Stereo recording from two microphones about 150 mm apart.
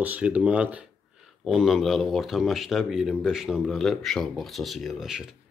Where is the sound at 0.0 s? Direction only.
10° right (ahead or behind).